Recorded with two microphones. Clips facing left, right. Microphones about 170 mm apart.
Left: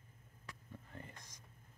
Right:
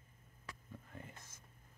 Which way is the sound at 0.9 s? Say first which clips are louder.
Left 1 dB; 5° right (ahead or behind).